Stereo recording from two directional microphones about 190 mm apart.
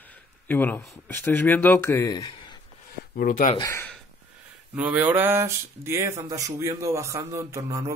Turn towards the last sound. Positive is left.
turn(degrees=-15)  # may be behind; listen again after turning